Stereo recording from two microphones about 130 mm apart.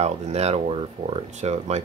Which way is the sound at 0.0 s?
55° right (ahead or behind).